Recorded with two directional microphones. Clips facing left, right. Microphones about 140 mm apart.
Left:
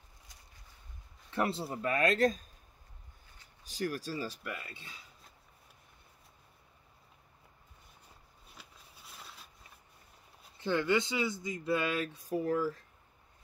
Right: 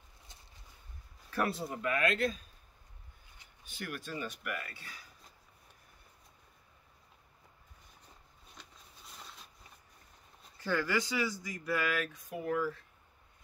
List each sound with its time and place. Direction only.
1.3 s speech: 25° left (ahead or behind)
3.6 s speech: 35° left (ahead or behind)
8.5 s a sound: 5° left (ahead or behind)
10.6 s speech: 25° left (ahead or behind); by 12.8 s 40° left (ahead or behind)